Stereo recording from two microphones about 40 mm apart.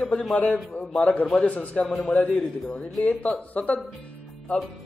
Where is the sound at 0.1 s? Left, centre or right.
Left.